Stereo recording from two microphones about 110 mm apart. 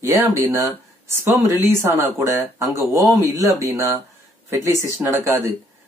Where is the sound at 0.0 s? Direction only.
25° right (ahead or behind).